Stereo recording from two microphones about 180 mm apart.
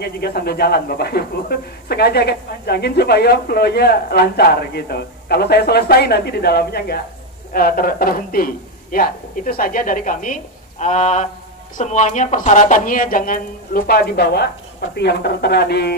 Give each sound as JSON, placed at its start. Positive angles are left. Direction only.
{"t": 0.0, "sound": "a man's voice", "side_deg": 60}